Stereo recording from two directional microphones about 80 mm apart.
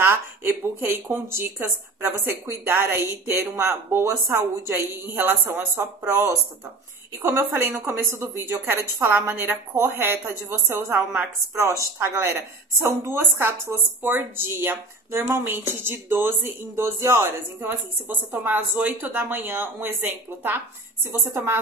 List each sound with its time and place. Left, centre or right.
0.0 s a woman's voice: right
5.5 s a woman's voice: centre
6.0 s a woman's voice: right
11.5 s a woman's voice: right